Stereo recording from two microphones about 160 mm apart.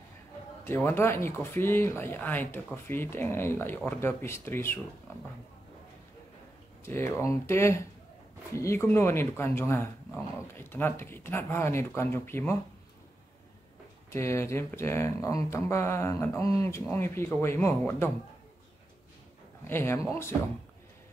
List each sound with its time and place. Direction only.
0.7 s speech: 15° left (ahead or behind)
6.8 s speech: 15° left (ahead or behind)
14.1 s speech: 15° left (ahead or behind)
19.6 s speech: 15° left (ahead or behind)